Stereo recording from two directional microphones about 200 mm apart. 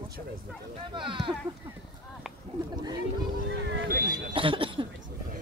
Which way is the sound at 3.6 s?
45° right (ahead or behind).